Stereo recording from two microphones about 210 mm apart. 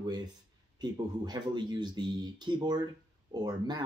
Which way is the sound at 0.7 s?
20° right (ahead or behind).